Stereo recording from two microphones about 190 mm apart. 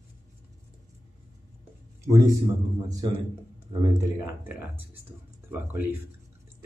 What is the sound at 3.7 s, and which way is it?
Speech, 25° right (ahead or behind).